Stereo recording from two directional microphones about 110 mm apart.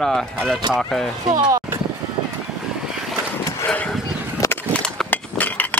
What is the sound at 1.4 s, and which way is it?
Speech, 30° right (ahead or behind).